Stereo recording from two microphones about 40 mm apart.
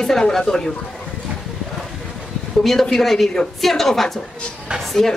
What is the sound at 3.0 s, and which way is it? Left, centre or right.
A woman's voice, centre.